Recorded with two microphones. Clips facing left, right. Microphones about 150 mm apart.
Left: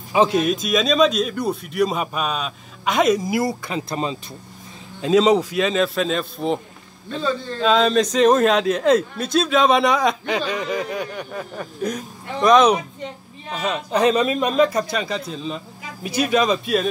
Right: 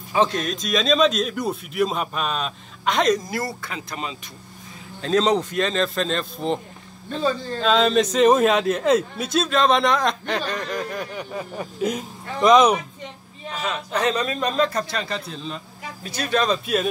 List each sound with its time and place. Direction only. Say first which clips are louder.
0.1 s a man's voice: left 4 dB; 10° left (ahead or behind)
3.7 s speech: left 7 dB; 30° left (ahead or behind)
5.0 s a man's voice: left 4 dB; 5° left (ahead or behind)
7.6 s a man's voice: left 2 dB; centre (ahead or behind)
11.9 s a man's voice: even; 15° right (ahead or behind)
13.6 s speech: left 5 dB; 15° left (ahead or behind)